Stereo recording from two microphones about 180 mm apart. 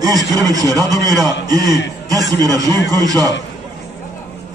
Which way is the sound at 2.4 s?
20° right (ahead or behind).